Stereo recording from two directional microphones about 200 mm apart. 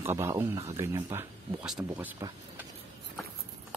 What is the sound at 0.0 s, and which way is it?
Speech, 10° right (ahead or behind).